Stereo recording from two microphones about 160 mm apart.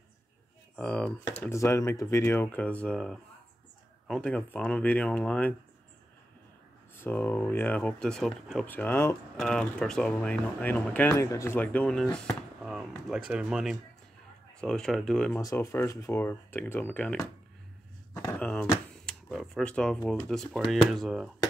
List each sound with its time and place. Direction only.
0.7 s speech: 5° left (ahead or behind)
1.5 s speech: 15° left (ahead or behind)
7.0 s speech: 10° left (ahead or behind)
8.6 s speech: 10° left (ahead or behind)
15.4 s speech: 20° left (ahead or behind)
18.4 s a sound: 10° left (ahead or behind)
19.2 s speech: centre (ahead or behind)